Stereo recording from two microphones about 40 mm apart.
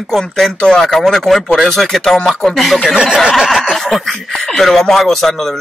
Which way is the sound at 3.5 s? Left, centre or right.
Centre.